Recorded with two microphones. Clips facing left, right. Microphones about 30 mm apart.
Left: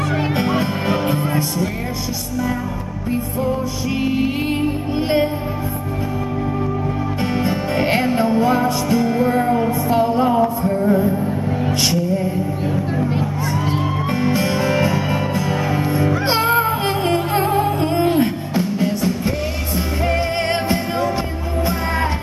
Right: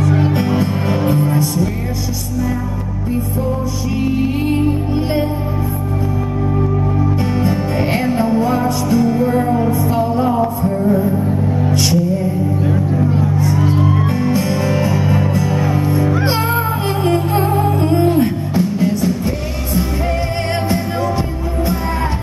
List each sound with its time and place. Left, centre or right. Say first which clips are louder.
0.4 s music: right 2 dB; centre
4.1 s music: right 4 dB; centre
7.4 s music: right 1 dB; centre
13.1 s music: right 4 dB; left